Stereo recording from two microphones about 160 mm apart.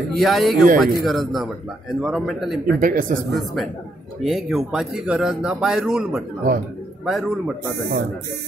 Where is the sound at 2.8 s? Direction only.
60° right (ahead or behind).